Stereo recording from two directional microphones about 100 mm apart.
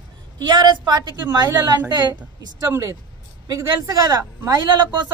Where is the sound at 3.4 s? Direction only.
40° right (ahead or behind).